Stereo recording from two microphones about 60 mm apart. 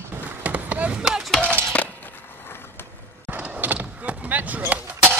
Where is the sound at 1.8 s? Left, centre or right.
Left.